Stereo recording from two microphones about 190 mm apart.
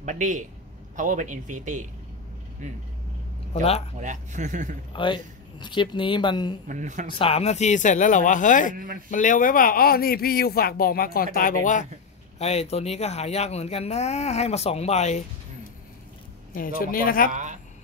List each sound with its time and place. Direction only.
0.0 s speech: 40° right (ahead or behind)
4.0 s speech: 40° right (ahead or behind)
4.9 s speech: 25° left (ahead or behind)
6.7 s speech: 40° right (ahead or behind)
7.1 s speech: 30° left (ahead or behind)
8.7 s speech: 45° right (ahead or behind)
9.1 s speech: 40° left (ahead or behind)
16.5 s speech: 50° left (ahead or behind)
17.3 s speech: 40° right (ahead or behind)